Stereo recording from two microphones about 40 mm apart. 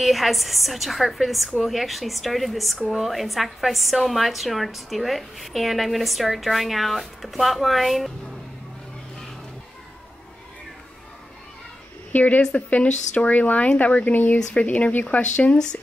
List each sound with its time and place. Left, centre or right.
0.0 s a woman's voice: centre
12.1 s speech: left
14.1 s speech: left
15.5 s speech: left